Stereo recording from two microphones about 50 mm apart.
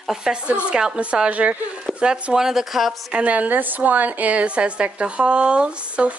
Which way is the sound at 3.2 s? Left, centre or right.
Right.